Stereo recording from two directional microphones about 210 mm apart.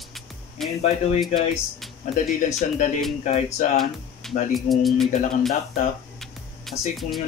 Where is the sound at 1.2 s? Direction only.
Centre (ahead or behind).